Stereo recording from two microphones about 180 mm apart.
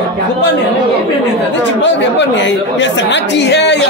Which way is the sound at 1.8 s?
80° left.